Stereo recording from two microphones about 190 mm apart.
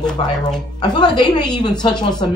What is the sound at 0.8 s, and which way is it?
A woman's voice, 25° left (ahead or behind).